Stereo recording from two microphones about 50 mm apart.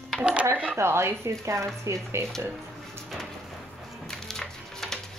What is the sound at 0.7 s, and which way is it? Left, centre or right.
Speech, right.